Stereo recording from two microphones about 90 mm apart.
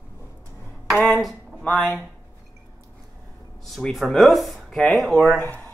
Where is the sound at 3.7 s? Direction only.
Centre (ahead or behind).